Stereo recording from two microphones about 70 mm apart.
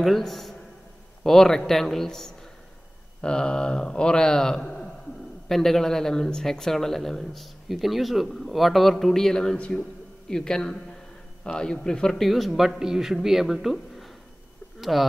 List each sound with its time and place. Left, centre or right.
0.0 s a man's voice: centre